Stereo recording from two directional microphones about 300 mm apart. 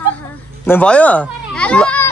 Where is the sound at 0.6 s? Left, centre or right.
Centre.